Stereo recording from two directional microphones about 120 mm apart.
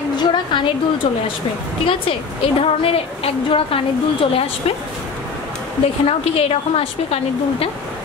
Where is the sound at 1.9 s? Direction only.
45° left (ahead or behind).